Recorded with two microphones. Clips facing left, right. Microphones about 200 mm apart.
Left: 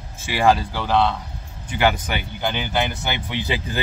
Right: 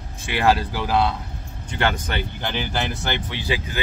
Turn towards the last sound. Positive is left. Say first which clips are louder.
# left 1 dB
turn(degrees=20)  # may be behind; listen again after turning